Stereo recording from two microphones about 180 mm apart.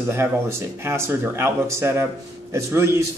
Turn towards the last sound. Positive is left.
turn(degrees=-15)  # may be behind; listen again after turning